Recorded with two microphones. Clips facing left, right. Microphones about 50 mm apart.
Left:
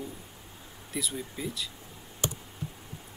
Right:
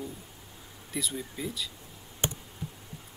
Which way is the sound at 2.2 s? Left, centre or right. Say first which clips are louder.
Even; right.